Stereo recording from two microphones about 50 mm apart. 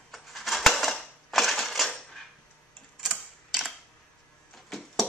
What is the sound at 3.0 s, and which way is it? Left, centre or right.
Tick-tock, centre.